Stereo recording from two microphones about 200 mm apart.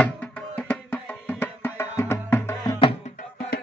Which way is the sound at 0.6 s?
10° left (ahead or behind).